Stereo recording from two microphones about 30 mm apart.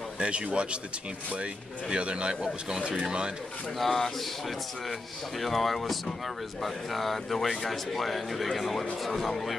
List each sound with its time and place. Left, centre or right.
0.2 s speech: right
1.9 s speech: right
2.7 s speech: right
3.7 s speech: centre